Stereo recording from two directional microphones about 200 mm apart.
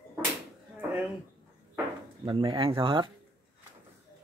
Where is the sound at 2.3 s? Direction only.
25° right (ahead or behind).